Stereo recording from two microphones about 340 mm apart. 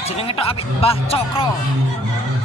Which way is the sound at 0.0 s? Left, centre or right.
Centre.